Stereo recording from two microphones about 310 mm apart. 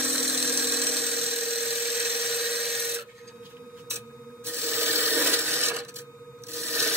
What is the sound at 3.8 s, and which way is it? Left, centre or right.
Rub, centre.